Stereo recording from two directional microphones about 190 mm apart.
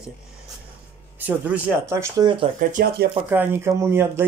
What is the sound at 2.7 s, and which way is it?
Speech, 50° right (ahead or behind).